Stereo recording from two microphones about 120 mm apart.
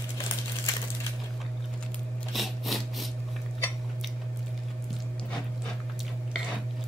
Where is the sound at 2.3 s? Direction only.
Centre (ahead or behind).